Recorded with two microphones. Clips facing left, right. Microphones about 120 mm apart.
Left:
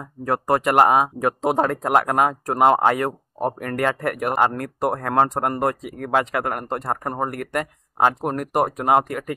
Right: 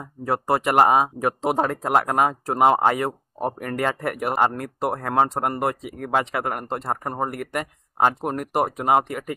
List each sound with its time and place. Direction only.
0.2 s speech: 5° right (ahead or behind)
2.5 s speech: 15° right (ahead or behind)
4.0 s speech: 15° right (ahead or behind)
4.4 s speech: 5° right (ahead or behind)